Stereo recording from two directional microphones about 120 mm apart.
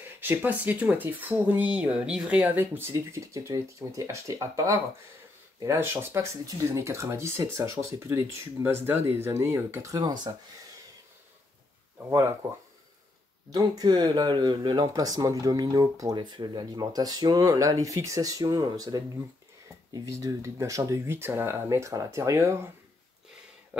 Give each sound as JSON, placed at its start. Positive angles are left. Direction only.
{"t": 0.0, "sound": "speech", "side_deg": -15}
{"t": 12.0, "sound": "speech", "side_deg": -25}
{"t": 13.5, "sound": "speech", "side_deg": -35}
{"t": 23.7, "sound": "a sound", "side_deg": -10}